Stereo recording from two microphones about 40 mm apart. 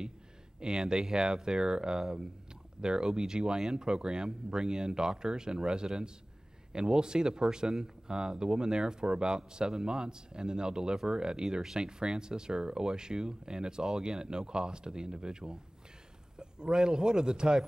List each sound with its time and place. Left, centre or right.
0.6 s a man's voice: centre